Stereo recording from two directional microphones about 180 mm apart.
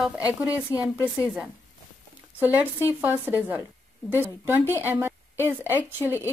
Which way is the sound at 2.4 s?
10° right (ahead or behind).